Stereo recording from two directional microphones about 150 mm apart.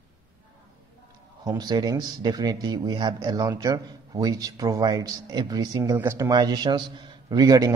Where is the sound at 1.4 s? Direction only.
25° right (ahead or behind).